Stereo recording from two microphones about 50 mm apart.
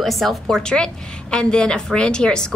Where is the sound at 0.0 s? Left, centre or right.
Centre.